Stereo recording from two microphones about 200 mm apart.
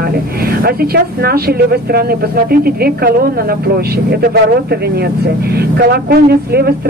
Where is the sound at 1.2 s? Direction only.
50° right (ahead or behind).